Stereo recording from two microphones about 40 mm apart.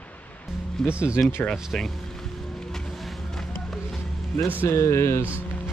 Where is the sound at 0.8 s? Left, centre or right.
Centre.